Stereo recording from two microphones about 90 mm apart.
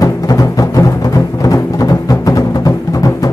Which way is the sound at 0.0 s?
45° left (ahead or behind).